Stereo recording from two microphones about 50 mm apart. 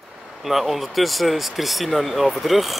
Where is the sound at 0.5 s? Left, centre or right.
Centre.